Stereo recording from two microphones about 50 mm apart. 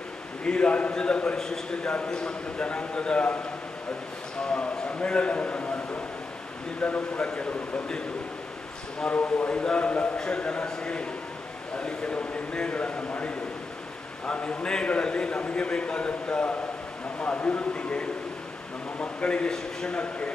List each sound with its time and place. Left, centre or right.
0.4 s a man's voice: left
4.5 s a man's voice: centre
6.8 s a man's voice: centre
9.0 s a man's voice: left
14.2 s a man's voice: left